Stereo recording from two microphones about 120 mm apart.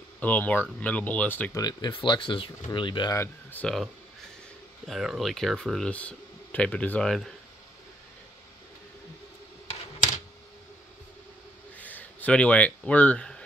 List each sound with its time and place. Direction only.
0.2 s speech: 15° left (ahead or behind)
1.5 s speech: 30° left (ahead or behind)
3.1 s speech: 20° left (ahead or behind)
3.6 s speech: centre (ahead or behind)
11.7 s a sound: 15° left (ahead or behind)